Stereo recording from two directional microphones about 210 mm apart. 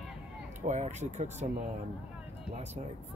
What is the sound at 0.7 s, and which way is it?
Speech, 35° right (ahead or behind).